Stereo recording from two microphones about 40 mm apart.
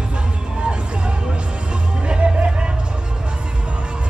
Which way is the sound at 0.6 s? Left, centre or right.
Right.